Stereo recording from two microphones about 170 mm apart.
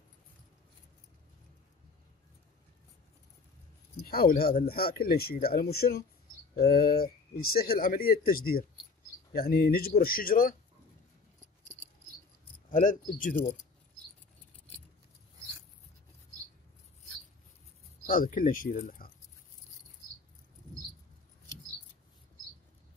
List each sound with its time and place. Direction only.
4.0 s speech: 60° left (ahead or behind)
12.7 s speech: 50° left (ahead or behind)
18.0 s speech: 55° left (ahead or behind)